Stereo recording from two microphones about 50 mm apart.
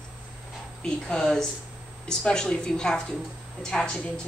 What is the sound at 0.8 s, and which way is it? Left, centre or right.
Speech, centre.